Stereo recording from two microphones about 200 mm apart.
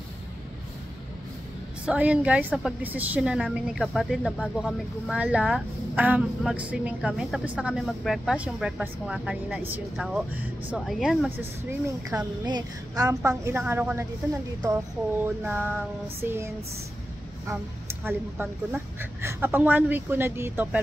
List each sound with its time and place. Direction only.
1.9 s a woman's voice: 5° right (ahead or behind)
12.1 s speech: 20° right (ahead or behind)